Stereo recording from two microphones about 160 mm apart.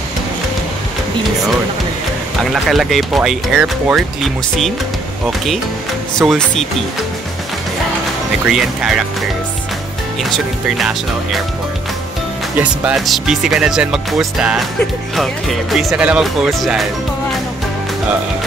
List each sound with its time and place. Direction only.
2.5 s speech: centre (ahead or behind)
6.1 s speech: 5° left (ahead or behind)
8.5 s speech: 5° right (ahead or behind)
10.3 s speech: centre (ahead or behind)
12.5 s speech: 5° right (ahead or behind)